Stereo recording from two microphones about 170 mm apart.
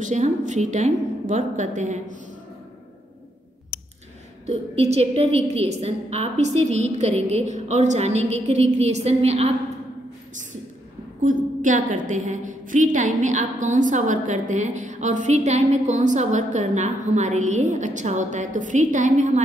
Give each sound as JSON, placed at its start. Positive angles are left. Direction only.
{"t": 0.0, "sound": "a woman's voice", "side_deg": -45}
{"t": 4.5, "sound": "a woman's voice", "side_deg": -40}
{"t": 11.2, "sound": "a woman's voice", "side_deg": -50}